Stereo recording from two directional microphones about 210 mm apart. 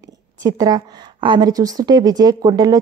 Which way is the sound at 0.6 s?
20° right (ahead or behind).